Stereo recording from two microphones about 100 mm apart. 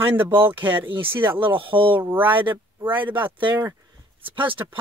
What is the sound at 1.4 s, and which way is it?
Speech, 55° right (ahead or behind).